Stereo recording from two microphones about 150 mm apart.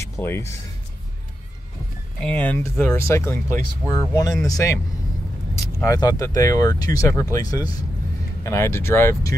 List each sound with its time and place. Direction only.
0.1 s speech: 15° left (ahead or behind)
2.2 s speech: 10° left (ahead or behind)
5.9 s speech: 25° left (ahead or behind)